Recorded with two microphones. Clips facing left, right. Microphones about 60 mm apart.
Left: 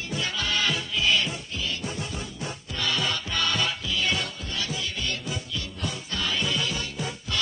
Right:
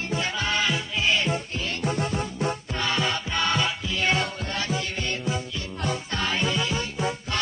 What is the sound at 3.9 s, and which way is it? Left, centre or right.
Music, right.